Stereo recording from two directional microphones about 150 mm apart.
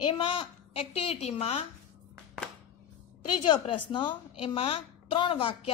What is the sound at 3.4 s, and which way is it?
A woman's voice, 35° left (ahead or behind).